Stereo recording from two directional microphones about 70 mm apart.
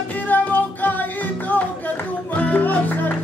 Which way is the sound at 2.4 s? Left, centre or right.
Left.